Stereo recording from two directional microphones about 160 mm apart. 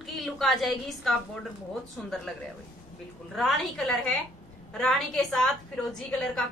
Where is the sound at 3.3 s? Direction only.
Centre (ahead or behind).